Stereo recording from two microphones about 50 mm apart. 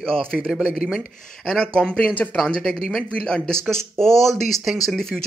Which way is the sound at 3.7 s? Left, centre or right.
Centre.